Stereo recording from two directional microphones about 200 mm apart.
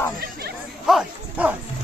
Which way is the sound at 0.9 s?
5° right (ahead or behind).